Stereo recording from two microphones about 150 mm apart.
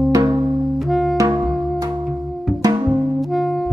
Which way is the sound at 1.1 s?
25° right (ahead or behind).